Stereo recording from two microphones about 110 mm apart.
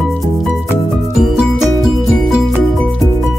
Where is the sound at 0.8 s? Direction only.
Centre (ahead or behind).